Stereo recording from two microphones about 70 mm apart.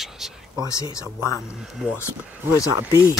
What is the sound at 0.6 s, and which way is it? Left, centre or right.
Speech, left.